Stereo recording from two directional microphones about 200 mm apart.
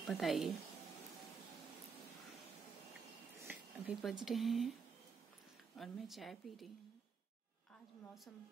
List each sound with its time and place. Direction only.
0.0 s a woman's voice: centre (ahead or behind)
3.4 s speech: centre (ahead or behind)
5.8 s a woman's voice: centre (ahead or behind)